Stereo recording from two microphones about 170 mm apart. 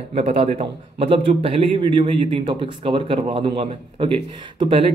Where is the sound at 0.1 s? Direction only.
35° right (ahead or behind).